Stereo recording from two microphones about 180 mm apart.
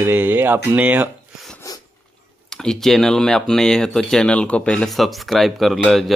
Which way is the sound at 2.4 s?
Centre (ahead or behind).